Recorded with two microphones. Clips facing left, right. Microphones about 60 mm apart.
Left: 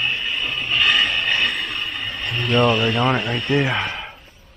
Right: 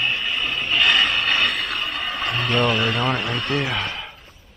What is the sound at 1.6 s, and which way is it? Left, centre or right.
Speech, centre.